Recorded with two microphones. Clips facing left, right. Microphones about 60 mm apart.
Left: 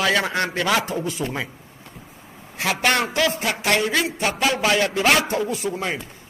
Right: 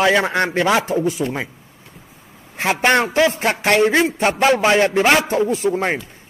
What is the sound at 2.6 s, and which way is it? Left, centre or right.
A man's voice, right.